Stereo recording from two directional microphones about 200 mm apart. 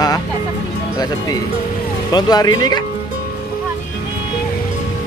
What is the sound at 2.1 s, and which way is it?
Speech, 20° left (ahead or behind).